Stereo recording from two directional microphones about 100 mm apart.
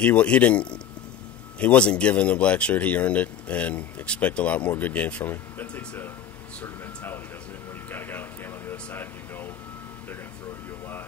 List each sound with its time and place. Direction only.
0.0 s speech: 15° left (ahead or behind)
6.6 s air conditioning: 20° left (ahead or behind)